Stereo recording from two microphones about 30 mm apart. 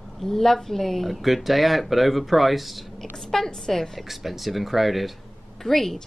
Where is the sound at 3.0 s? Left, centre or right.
Centre.